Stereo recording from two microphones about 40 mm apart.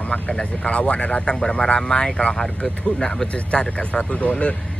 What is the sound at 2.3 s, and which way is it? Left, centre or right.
Speech, centre.